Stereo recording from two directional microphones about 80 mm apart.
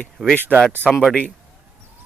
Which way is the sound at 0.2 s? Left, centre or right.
Centre.